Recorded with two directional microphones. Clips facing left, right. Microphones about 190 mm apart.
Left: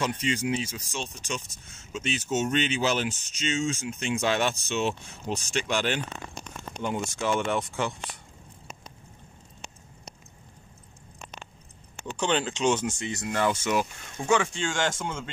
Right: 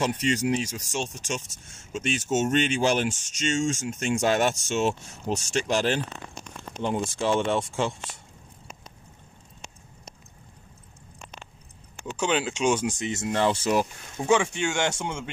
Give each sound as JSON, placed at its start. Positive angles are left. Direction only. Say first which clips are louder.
{"t": 0.2, "sound": "speech", "louder": "right 3 dB", "side_deg": -40}
{"t": 6.8, "sound": "speech", "louder": "right 3 dB", "side_deg": -25}
{"t": 12.2, "sound": "speech", "louder": "right 1 dB", "side_deg": -5}
{"t": 14.2, "sound": "speech", "louder": "right 2 dB", "side_deg": -15}